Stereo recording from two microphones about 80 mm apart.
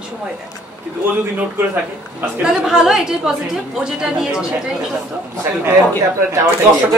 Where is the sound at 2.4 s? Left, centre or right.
Centre.